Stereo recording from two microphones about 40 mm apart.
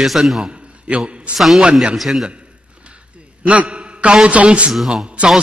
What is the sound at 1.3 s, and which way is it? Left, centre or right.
Speech, centre.